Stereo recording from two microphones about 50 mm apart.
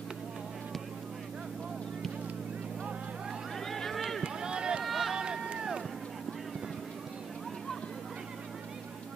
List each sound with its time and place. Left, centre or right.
3.5 s vehicle: centre
4.2 s run: centre
4.8 s run: centre
5.1 s run: centre